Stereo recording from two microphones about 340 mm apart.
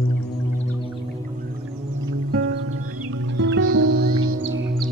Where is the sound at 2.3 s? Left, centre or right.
Right.